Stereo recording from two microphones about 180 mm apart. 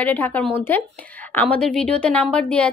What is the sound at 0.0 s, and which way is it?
A woman's voice, 10° left (ahead or behind).